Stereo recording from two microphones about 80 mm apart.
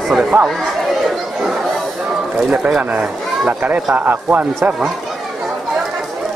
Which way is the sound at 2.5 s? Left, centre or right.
Centre.